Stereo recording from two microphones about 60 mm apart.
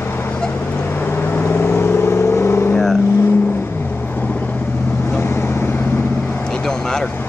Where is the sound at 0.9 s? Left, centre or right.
Left.